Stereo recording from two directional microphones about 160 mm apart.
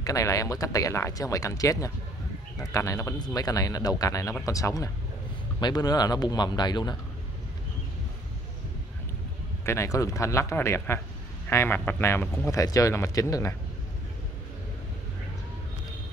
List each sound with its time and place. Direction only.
0.0 s speech: 20° left (ahead or behind)
9.7 s speech: 20° left (ahead or behind)